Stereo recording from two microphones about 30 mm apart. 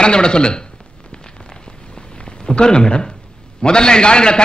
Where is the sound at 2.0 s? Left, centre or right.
Left.